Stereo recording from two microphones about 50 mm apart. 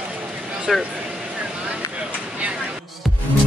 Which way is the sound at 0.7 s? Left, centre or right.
Centre.